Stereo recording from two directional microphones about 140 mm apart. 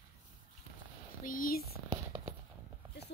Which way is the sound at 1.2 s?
85° left.